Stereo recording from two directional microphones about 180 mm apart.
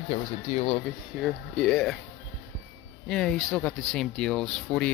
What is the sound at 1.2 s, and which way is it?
Speech, 5° left (ahead or behind).